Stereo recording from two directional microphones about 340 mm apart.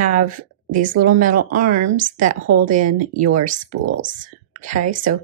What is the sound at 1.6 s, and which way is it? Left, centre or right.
Speech, right.